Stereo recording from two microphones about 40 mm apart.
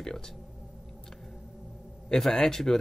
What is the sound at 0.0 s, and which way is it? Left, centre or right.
Speech, centre.